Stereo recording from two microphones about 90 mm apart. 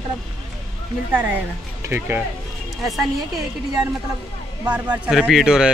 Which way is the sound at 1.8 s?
25° right (ahead or behind).